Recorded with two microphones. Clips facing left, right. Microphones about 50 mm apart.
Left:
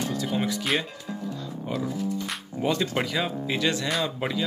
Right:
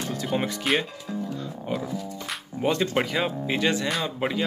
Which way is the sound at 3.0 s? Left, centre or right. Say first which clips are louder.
Right 1 dB; right.